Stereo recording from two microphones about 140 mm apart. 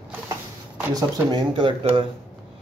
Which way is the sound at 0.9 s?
30° right (ahead or behind).